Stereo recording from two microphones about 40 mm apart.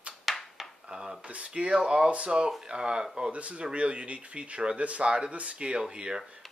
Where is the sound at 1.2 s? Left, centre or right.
Right.